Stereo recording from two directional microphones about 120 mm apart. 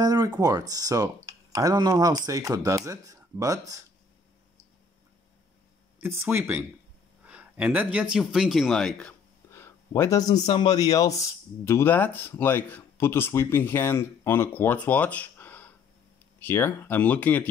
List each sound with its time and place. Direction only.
0.0 s speech: 35° right (ahead or behind)
5.9 s speech: 20° right (ahead or behind); by 9.1 s 5° left (ahead or behind)
9.5 s speech: 20° left (ahead or behind)